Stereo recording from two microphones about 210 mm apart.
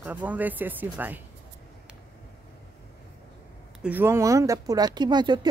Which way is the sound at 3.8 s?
10° right (ahead or behind).